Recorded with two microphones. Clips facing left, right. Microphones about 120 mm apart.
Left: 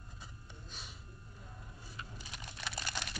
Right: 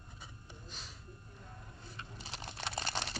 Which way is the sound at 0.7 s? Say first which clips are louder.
Right 1 dB; 5° left (ahead or behind).